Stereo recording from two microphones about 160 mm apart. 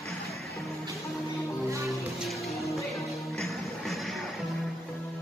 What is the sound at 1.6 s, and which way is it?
Music, 20° right (ahead or behind).